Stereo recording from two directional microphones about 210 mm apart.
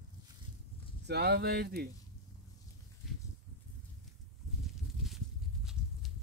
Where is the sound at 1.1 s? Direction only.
50° right (ahead or behind).